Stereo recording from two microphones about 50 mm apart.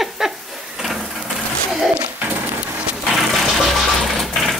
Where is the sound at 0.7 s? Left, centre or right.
Centre.